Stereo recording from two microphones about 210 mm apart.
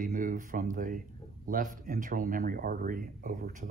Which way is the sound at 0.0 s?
40° right (ahead or behind).